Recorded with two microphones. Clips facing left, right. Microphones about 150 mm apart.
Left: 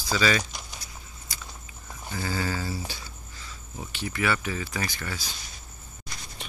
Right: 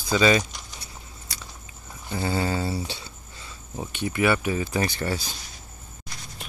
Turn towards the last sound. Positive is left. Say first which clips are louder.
# right 7 dB
turn(degrees=-30)  # may be behind; listen again after turning